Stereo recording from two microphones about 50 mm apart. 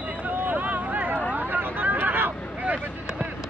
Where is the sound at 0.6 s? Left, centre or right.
Right.